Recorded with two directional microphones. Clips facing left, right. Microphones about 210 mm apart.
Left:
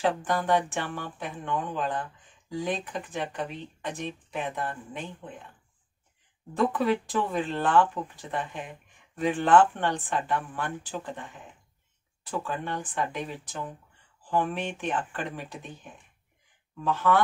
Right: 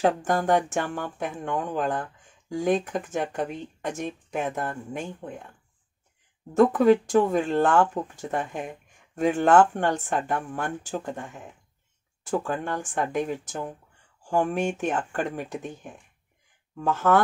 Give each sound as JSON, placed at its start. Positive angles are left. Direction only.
{"t": 0.0, "sound": "speech", "side_deg": -45}
{"t": 6.5, "sound": "speech", "side_deg": -45}